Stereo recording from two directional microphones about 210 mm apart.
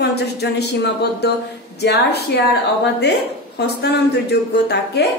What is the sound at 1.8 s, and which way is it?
A woman's voice, 50° left (ahead or behind).